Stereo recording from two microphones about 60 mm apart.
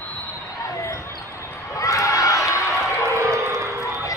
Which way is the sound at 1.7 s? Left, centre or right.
Left.